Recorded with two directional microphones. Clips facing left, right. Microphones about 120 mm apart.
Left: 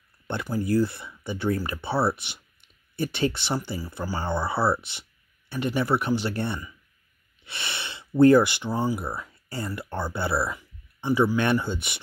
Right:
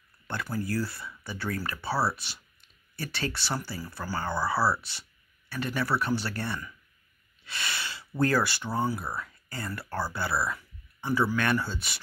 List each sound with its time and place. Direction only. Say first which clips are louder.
0.3 s speech: left 6 dB; 20° left (ahead or behind)
7.4 s a sound: even; 25° left (ahead or behind)
8.2 s speech: left 10 dB; 20° left (ahead or behind)